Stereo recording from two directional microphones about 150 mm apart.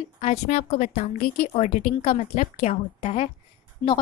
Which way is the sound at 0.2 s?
45° left (ahead or behind).